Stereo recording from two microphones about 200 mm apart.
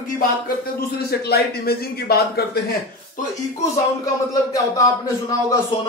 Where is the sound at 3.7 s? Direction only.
15° left (ahead or behind).